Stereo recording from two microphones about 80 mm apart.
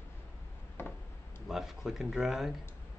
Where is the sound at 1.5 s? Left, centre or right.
Centre.